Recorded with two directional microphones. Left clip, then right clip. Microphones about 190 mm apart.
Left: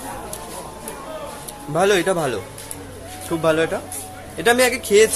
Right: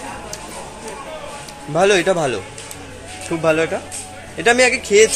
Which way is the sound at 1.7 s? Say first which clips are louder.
Right 3 dB; 20° right (ahead or behind).